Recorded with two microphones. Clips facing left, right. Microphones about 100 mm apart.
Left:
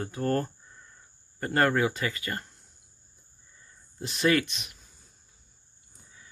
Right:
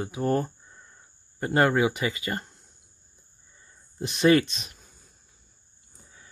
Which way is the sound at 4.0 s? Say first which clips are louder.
Right 5 dB; 25° right (ahead or behind).